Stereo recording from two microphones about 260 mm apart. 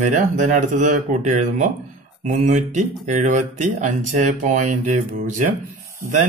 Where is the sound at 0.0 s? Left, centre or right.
Right.